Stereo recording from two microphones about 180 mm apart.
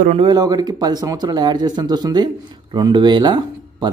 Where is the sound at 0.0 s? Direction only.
35° right (ahead or behind).